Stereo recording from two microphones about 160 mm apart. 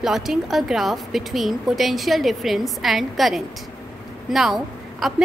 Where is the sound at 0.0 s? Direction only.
Centre (ahead or behind).